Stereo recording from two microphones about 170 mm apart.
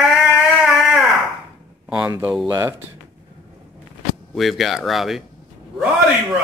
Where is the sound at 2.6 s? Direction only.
20° right (ahead or behind).